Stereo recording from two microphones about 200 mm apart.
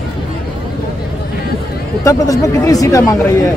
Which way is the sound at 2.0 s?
15° left (ahead or behind).